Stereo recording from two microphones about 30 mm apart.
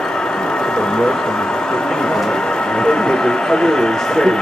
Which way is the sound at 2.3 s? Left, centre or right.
Left.